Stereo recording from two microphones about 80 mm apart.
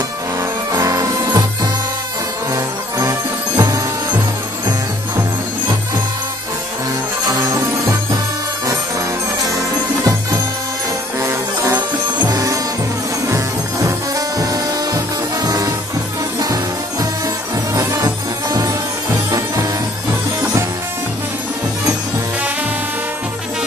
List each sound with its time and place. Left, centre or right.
0.4 s music: right
2.5 s music: right
7.2 s music: right
9.5 s music: right
13.8 s music: right
17.7 s music: right